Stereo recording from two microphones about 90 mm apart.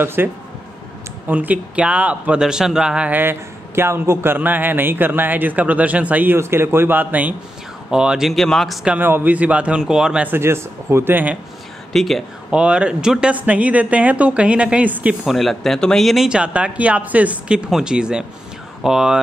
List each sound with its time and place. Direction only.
0.0 s a man's voice: 25° right (ahead or behind); by 3.1 s 5° right (ahead or behind)
3.1 s a man's voice: 25° right (ahead or behind); by 8.7 s 5° left (ahead or behind)
8.8 s speech: 20° right (ahead or behind)
10.2 s a man's voice: 25° right (ahead or behind)
11.9 s speech: centre (ahead or behind)
12.4 s speech: 10° right (ahead or behind)
15.2 s speech: centre (ahead or behind)
16.3 s speech: 10° right (ahead or behind)